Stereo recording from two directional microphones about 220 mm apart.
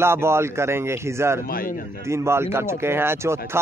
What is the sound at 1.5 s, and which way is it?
Speech, 40° left (ahead or behind).